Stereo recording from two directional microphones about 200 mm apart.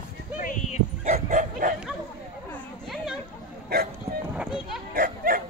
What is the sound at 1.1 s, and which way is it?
Bow-wow, 40° right (ahead or behind).